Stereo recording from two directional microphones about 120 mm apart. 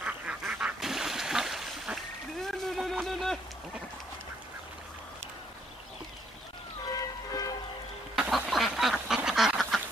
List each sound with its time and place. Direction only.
0.0 s goose: 10° right (ahead or behind)
2.4 s a sound: centre (ahead or behind)
6.9 s music: 30° left (ahead or behind)
8.2 s duck: 5° right (ahead or behind)